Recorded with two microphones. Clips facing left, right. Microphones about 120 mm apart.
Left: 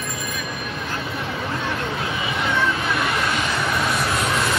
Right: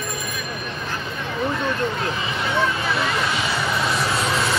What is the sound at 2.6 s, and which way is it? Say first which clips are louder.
Vehicle: right 3 dB; centre (ahead or behind).